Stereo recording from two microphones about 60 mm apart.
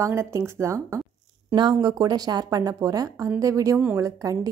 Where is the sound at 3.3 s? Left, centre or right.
Right.